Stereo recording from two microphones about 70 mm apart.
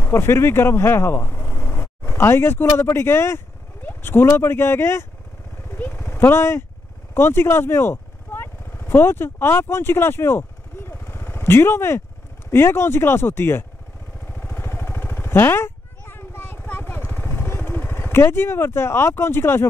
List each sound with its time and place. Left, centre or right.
0.0 s speech: left
7.2 s vehicle: left
12.4 s speech: left
14.2 s vehicle: left